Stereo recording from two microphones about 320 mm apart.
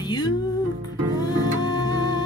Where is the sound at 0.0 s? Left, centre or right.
Centre.